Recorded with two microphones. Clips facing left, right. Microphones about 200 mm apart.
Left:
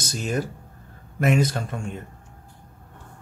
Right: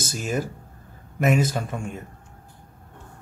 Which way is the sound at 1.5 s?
5° right (ahead or behind).